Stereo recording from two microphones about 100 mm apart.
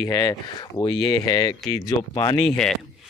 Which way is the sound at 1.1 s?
40° left (ahead or behind).